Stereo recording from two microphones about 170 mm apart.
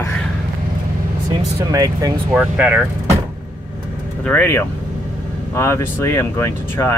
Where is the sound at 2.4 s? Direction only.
10° right (ahead or behind).